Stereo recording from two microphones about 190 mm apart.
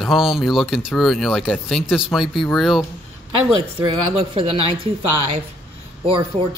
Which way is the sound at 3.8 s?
30° right (ahead or behind).